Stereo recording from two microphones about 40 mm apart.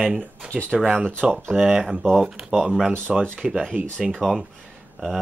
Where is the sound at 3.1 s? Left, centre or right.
Centre.